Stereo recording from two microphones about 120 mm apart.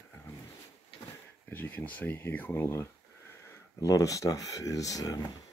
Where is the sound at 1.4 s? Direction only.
15° left (ahead or behind); by 5.3 s 30° left (ahead or behind).